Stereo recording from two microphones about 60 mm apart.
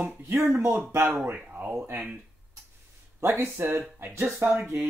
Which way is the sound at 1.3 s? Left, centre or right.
Right.